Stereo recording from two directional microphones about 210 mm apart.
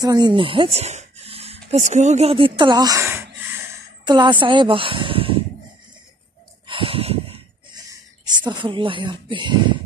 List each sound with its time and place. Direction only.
0.0 s speech: 20° right (ahead or behind)
6.7 s a sound: 25° right (ahead or behind)
7.9 s speech: 20° right (ahead or behind)